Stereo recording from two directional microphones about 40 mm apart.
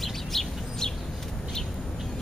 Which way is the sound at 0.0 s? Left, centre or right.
Centre.